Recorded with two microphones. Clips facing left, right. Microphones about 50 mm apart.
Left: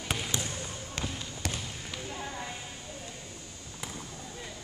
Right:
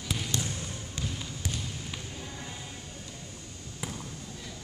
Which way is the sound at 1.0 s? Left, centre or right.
Left.